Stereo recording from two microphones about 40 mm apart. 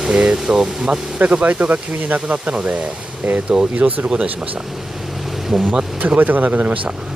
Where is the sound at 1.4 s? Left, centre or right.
Right.